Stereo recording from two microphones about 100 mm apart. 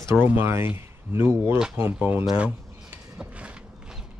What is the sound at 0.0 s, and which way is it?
Speech, 20° right (ahead or behind).